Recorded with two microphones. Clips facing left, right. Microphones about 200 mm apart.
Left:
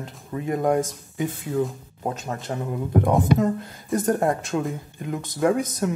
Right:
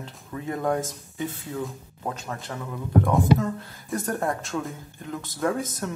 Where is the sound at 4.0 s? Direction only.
20° left (ahead or behind).